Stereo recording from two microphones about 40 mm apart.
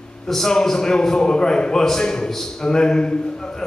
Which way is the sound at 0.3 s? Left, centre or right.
Centre.